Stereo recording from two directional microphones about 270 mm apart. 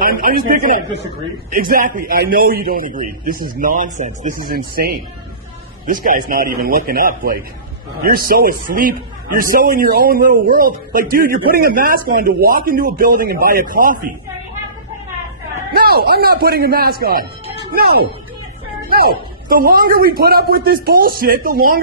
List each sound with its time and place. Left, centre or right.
0.0 s a man's voice: right
15.7 s a man's voice: right